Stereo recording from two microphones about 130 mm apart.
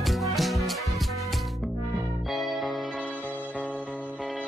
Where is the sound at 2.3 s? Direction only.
Centre (ahead or behind).